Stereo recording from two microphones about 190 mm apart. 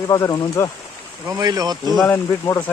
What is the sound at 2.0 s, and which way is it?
Speech, 10° left (ahead or behind).